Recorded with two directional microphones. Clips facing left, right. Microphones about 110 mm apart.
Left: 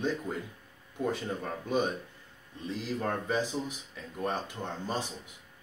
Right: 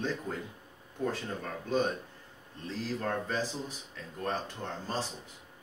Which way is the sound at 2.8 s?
10° left (ahead or behind).